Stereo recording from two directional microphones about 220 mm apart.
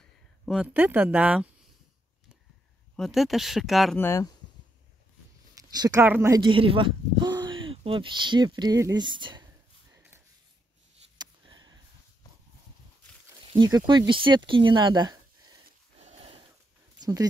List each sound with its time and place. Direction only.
0.5 s speech: 5° right (ahead or behind)
3.0 s speech: centre (ahead or behind)
4.0 s speech: 10° left (ahead or behind)
5.5 s speech: 15° right (ahead or behind)
9.9 s snort: 10° right (ahead or behind)
11.1 s a sound: 20° right (ahead or behind)
13.5 s speech: 20° right (ahead or behind)
16.0 s sniff: 25° right (ahead or behind)
17.0 s speech: 15° right (ahead or behind)